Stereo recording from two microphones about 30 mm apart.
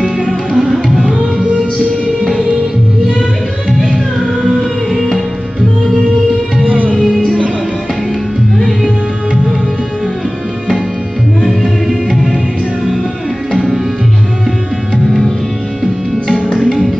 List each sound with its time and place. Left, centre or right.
0.3 s music: centre
6.6 s music: right
16.5 s music: centre